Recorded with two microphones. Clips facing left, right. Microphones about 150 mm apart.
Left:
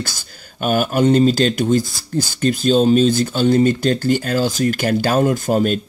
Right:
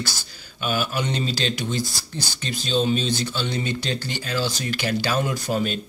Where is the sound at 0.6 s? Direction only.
50° left (ahead or behind).